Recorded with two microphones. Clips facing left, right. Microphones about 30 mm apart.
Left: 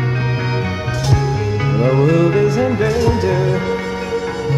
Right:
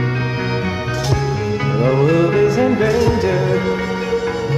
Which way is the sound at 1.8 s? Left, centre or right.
Centre.